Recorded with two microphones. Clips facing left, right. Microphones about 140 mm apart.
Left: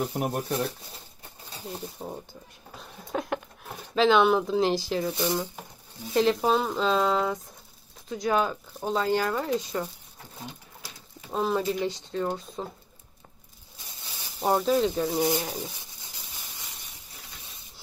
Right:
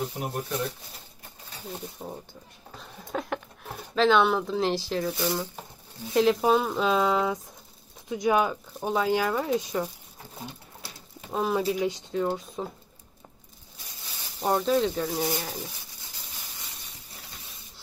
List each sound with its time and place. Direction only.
0.1 s speech: 50° left (ahead or behind)
1.7 s speech: 10° left (ahead or behind)
2.7 s a sound: 5° left (ahead or behind)
3.9 s speech: centre (ahead or behind)
5.1 s speech: 20° left (ahead or behind)
6.1 s speech: 5° right (ahead or behind)
11.2 s speech: 5° right (ahead or behind)
14.4 s speech: 5° left (ahead or behind)
15.1 s speech: 20° left (ahead or behind)